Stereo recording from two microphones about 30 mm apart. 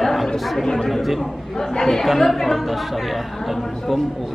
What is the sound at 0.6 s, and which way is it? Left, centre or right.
Speech, centre.